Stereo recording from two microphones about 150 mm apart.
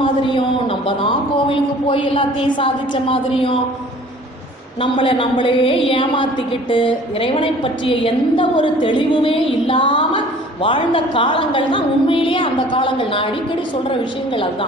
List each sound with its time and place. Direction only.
0.0 s a woman's voice: 35° left (ahead or behind)
4.8 s a woman's voice: 35° left (ahead or behind)